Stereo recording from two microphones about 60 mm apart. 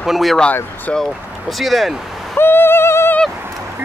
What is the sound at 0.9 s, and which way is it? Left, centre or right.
Speech, left.